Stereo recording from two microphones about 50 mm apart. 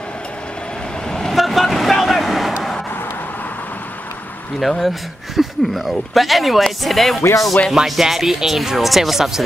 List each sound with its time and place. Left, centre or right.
1.3 s toot: centre
4.6 s speech: centre
7.2 s speech: left
7.7 s speech: centre